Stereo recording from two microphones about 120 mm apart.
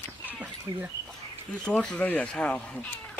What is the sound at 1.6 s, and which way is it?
Speech, 5° left (ahead or behind).